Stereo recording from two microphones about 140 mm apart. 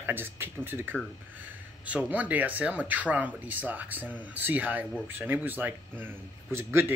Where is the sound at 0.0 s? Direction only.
15° right (ahead or behind).